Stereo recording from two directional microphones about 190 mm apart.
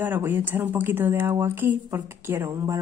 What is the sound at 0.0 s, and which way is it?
Speech, 10° right (ahead or behind).